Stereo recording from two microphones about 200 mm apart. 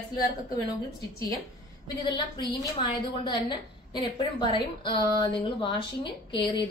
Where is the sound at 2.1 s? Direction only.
25° left (ahead or behind).